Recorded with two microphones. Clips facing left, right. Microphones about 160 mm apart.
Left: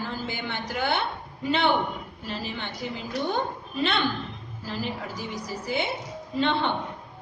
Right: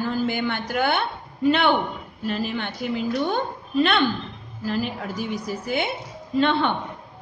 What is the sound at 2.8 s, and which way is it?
Speech, 60° right (ahead or behind).